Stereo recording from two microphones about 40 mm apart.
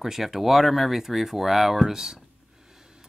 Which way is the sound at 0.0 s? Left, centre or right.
Centre.